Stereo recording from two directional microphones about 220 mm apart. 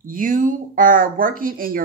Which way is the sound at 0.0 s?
40° right (ahead or behind).